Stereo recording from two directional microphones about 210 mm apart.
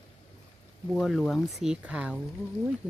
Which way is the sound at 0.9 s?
Centre (ahead or behind).